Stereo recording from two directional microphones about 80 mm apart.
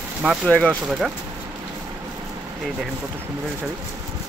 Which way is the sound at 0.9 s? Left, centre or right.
Centre.